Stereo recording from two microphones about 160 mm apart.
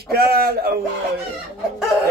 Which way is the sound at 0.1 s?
75° right (ahead or behind).